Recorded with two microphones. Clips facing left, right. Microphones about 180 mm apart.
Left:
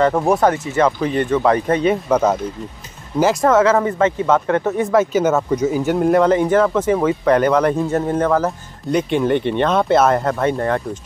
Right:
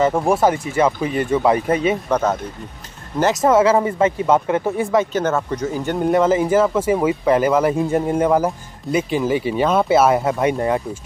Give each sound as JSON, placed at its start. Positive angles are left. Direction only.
{"t": 0.3, "sound": "speech", "side_deg": -10}
{"t": 1.9, "sound": "speech", "side_deg": 10}
{"t": 3.4, "sound": "speech", "side_deg": -10}
{"t": 4.9, "sound": "speech", "side_deg": 5}
{"t": 9.1, "sound": "speech", "side_deg": -5}